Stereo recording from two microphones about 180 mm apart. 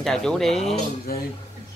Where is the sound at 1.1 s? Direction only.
55° left (ahead or behind).